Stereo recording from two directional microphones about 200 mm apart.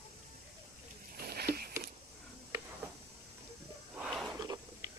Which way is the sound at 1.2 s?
50° right (ahead or behind).